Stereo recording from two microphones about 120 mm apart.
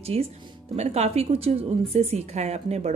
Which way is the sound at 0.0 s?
55° right (ahead or behind).